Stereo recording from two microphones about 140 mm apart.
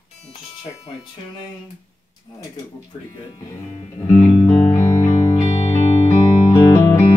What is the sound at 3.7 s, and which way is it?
Music, 50° left (ahead or behind).